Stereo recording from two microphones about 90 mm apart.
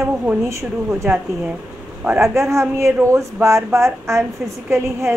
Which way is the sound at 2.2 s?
30° right (ahead or behind).